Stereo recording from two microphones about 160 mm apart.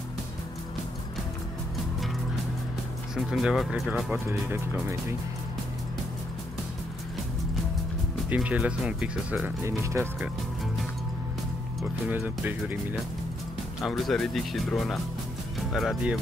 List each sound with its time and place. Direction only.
3.3 s speech: centre (ahead or behind)
4.1 s speech: 15° right (ahead or behind)
8.3 s speech: 10° right (ahead or behind)
9.7 s speech: 15° right (ahead or behind)
12.1 s speech: 10° right (ahead or behind)
13.8 s speech: centre (ahead or behind)